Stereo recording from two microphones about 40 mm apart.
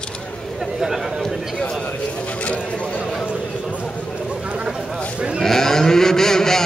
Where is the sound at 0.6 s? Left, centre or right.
Centre.